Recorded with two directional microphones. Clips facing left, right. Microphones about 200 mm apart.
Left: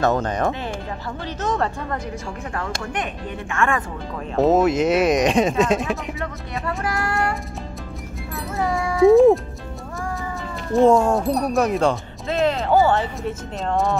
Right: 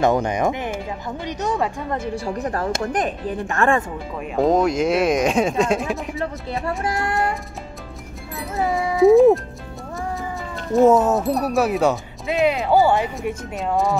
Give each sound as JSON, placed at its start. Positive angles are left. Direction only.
{"t": 0.0, "sound": "speech", "side_deg": -15}
{"t": 2.2, "sound": "speech", "side_deg": -40}
{"t": 4.4, "sound": "speech", "side_deg": 5}
{"t": 6.8, "sound": "music", "side_deg": -20}
{"t": 8.5, "sound": "cat", "side_deg": -20}
{"t": 8.9, "sound": "speech", "side_deg": 0}
{"t": 10.7, "sound": "speech", "side_deg": -5}